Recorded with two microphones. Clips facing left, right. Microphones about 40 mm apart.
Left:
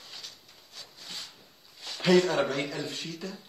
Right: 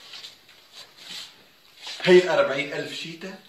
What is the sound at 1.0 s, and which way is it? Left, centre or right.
Rub, right.